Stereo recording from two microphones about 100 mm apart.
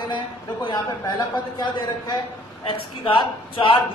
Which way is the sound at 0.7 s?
45° left (ahead or behind).